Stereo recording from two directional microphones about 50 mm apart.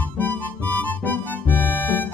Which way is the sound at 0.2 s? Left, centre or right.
Left.